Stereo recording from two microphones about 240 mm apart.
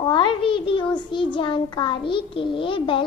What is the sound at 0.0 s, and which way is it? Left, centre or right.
A child's voice, centre.